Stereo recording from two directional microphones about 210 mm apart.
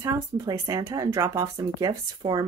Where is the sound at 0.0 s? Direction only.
15° right (ahead or behind).